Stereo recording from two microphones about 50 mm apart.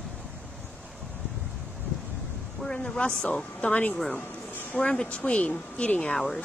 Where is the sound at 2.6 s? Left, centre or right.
Centre.